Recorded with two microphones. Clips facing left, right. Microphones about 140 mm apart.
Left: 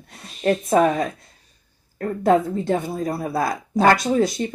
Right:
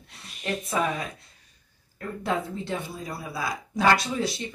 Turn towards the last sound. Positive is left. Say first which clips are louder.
# left 9 dB
turn(degrees=45)  # may be behind; listen again after turning